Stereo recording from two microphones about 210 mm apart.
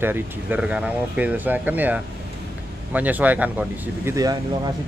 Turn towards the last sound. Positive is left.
turn(degrees=-15)  # may be behind; listen again after turning